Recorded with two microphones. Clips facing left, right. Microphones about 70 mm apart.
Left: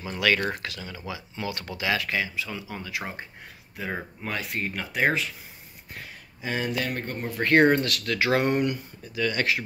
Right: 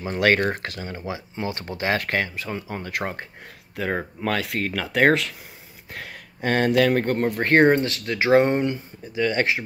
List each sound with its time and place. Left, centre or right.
0.0 s speech: right
7.3 s speech: right